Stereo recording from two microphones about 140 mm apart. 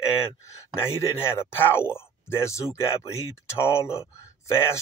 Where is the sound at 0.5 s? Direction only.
20° left (ahead or behind).